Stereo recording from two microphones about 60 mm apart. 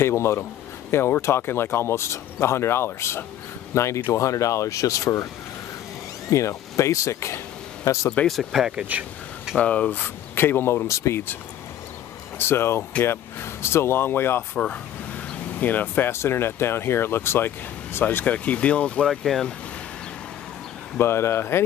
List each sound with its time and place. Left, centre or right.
0.0 s speech: left
6.3 s speech: left
8.3 s speech: centre
8.7 s speech: right
9.6 s speech: left
10.9 s speech: left
12.4 s speech: left
15.6 s speech: left
16.1 s speech: left
18.2 s speech: left
19.0 s speech: centre
21.0 s speech: left